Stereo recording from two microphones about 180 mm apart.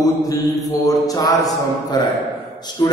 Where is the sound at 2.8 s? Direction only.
20° left (ahead or behind).